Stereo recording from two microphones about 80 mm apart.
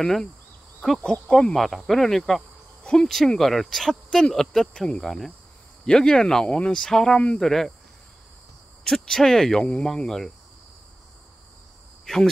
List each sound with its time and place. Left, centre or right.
0.0 s speech: centre
8.8 s speech: centre
12.1 s speech: centre